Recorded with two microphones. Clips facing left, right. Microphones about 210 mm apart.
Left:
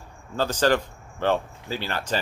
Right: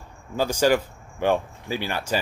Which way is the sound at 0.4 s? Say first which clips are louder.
Right 1 dB; 10° right (ahead or behind).